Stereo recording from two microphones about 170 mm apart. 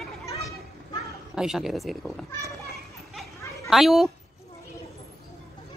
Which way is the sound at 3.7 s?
Centre (ahead or behind).